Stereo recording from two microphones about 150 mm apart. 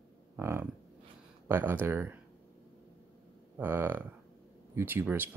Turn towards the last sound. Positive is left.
turn(degrees=-15)  # may be behind; listen again after turning